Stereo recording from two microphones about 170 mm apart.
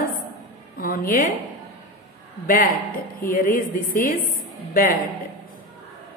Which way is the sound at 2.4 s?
55° left (ahead or behind).